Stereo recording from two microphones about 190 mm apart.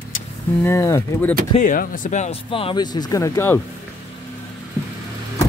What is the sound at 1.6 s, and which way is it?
Speech, 45° left (ahead or behind).